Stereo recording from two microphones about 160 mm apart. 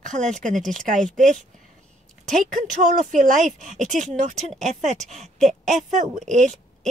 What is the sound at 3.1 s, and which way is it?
Speech, 55° right (ahead or behind).